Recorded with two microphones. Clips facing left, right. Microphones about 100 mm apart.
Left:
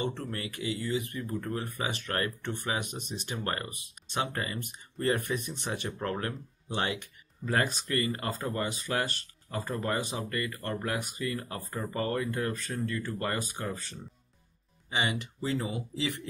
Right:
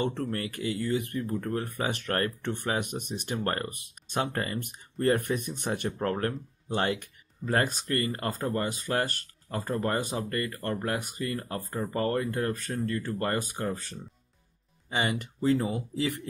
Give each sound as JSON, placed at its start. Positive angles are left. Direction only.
{"t": 0.0, "sound": "speech", "side_deg": -50}
{"t": 5.9, "sound": "speech", "side_deg": -40}
{"t": 14.9, "sound": "speech", "side_deg": -45}